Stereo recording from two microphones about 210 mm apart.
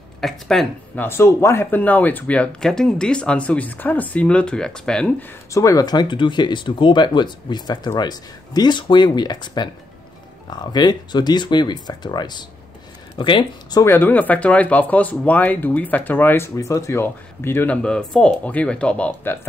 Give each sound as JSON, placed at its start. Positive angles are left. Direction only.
{"t": 0.2, "sound": "speech", "side_deg": 0}
{"t": 5.5, "sound": "speech", "side_deg": 15}